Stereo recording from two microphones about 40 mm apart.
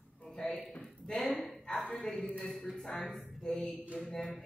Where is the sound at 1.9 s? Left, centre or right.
Centre.